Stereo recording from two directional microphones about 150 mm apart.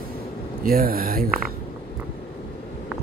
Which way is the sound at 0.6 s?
75° right (ahead or behind).